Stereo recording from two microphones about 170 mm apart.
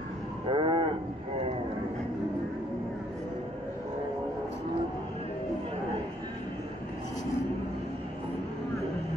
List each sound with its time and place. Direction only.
0.5 s livestock: 30° right (ahead or behind)